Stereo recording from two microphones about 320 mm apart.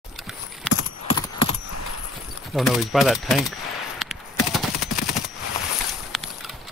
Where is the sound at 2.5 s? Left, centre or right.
Centre.